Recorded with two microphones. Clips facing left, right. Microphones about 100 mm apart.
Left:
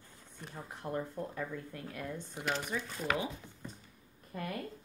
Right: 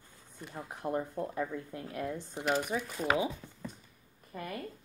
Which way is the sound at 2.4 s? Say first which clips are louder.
Right 5 dB; 10° right (ahead or behind).